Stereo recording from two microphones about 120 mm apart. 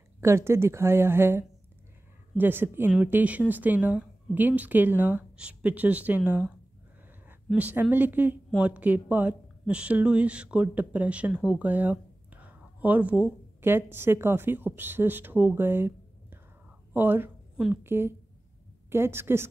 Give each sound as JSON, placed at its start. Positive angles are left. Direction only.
{"t": 0.2, "sound": "a woman's voice", "side_deg": -20}
{"t": 7.5, "sound": "a woman's voice", "side_deg": -10}